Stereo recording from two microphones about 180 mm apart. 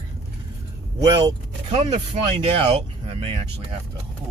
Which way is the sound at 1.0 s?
20° right (ahead or behind).